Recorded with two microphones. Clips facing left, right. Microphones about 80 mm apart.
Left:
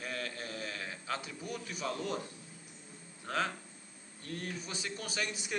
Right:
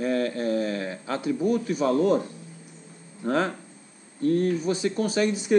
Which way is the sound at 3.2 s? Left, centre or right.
Right.